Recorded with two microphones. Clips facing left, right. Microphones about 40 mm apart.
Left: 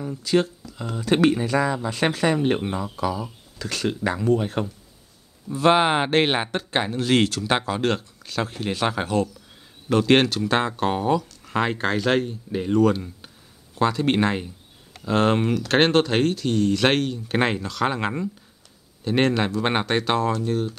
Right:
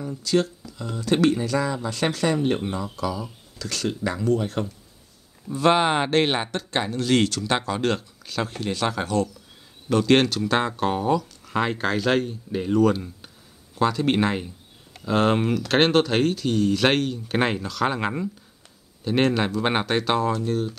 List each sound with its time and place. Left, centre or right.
0.2 s speech: left
5.5 s speech: centre